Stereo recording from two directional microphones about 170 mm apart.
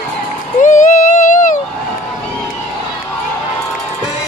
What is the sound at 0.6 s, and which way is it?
Music, 50° left (ahead or behind).